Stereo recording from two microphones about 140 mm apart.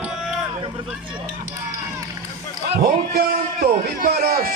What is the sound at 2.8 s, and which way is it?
A man's voice, 90° right.